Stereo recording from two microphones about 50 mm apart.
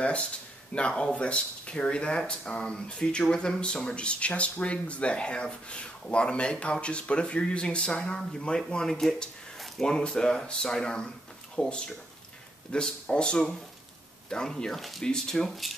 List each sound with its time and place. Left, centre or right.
0.0 s speech: left
14.8 s speech: centre